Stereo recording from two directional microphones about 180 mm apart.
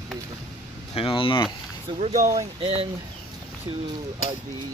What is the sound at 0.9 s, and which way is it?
Speech, 30° left (ahead or behind).